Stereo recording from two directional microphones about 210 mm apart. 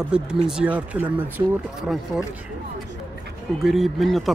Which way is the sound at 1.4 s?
20° right (ahead or behind).